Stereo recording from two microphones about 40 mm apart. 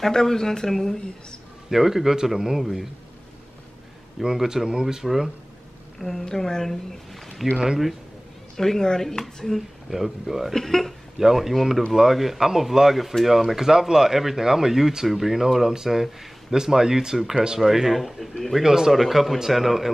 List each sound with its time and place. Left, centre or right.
0.0 s speech: centre
1.7 s speech: centre
4.2 s speech: centre
5.0 s a woman's voice: centre
7.5 s speech: centre
8.5 s speech: centre
9.8 s speech: centre
10.5 s speech: centre
11.1 s speech: centre
18.6 s speech: centre